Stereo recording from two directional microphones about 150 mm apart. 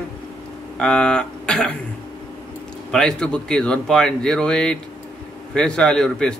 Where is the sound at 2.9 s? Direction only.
5° left (ahead or behind).